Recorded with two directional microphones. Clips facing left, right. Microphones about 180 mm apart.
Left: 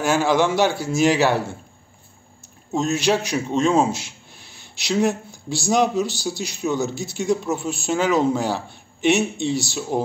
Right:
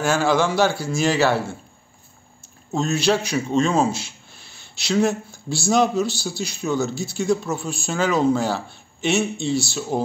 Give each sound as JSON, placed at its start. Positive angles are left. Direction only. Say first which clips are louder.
{"t": 0.0, "sound": "a man's voice", "louder": "left 1 dB", "side_deg": 15}
{"t": 2.7, "sound": "a man's voice", "louder": "even", "side_deg": 15}